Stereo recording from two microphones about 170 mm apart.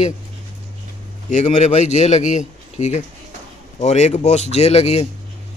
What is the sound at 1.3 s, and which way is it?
A man's voice, 45° left (ahead or behind).